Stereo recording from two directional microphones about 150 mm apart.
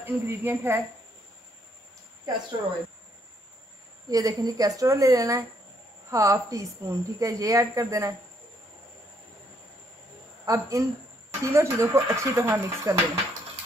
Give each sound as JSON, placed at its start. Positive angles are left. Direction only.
{"t": 0.0, "sound": "a woman's voice", "side_deg": -15}
{"t": 4.1, "sound": "a woman's voice", "side_deg": -25}
{"t": 10.4, "sound": "a woman's voice", "side_deg": -20}